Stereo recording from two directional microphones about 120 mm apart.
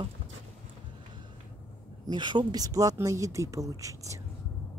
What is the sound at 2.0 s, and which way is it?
Speech, 40° right (ahead or behind).